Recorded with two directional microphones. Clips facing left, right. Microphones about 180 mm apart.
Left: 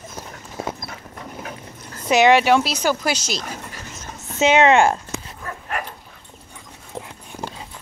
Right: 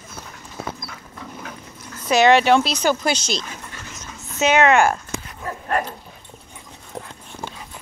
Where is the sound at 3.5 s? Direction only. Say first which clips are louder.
Left 3 dB; 35° left (ahead or behind).